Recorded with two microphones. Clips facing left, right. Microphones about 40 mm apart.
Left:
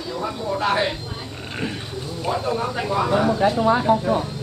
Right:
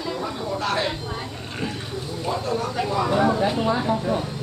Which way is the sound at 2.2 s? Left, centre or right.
Left.